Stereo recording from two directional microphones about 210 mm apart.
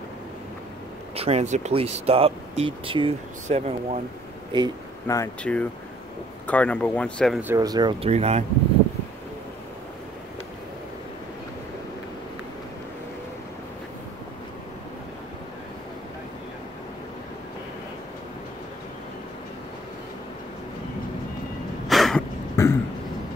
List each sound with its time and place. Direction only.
1.1 s speech: 30° right (ahead or behind)
5.0 s speech: 15° left (ahead or behind)
7.3 s speech: 10° right (ahead or behind)
8.1 s speech: 30° right (ahead or behind)
21.8 s a sound: centre (ahead or behind)
22.6 s throat clearing: 15° left (ahead or behind)